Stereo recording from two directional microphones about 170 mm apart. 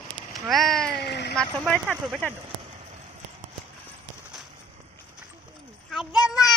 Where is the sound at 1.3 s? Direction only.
5° left (ahead or behind).